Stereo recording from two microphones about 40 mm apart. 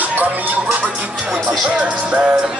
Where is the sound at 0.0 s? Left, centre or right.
Right.